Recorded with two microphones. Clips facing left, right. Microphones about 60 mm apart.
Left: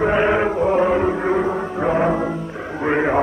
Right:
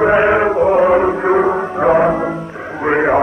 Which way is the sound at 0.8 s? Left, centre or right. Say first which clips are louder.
Right 5 dB; right.